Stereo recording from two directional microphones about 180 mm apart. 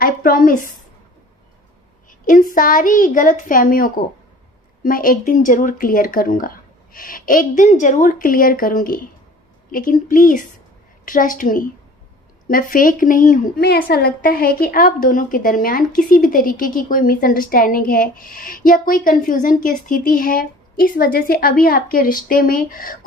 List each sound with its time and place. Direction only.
0.0 s a woman's voice: 50° left (ahead or behind)
2.0 s a sound: 50° left (ahead or behind)
2.5 s a woman's voice: 50° left (ahead or behind)